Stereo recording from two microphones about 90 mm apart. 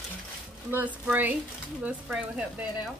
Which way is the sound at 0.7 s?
20° right (ahead or behind).